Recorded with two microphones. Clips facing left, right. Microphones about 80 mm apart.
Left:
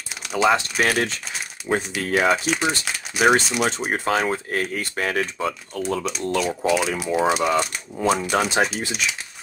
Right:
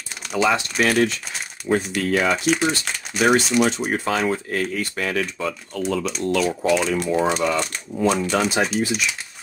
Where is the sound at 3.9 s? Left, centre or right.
Left.